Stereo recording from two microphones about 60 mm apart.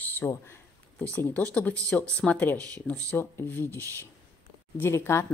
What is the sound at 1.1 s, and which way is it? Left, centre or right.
Speech, left.